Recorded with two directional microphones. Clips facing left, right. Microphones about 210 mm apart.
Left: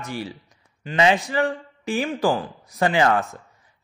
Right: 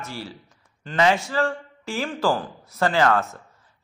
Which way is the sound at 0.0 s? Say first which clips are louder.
Left 4 dB; 15° left (ahead or behind).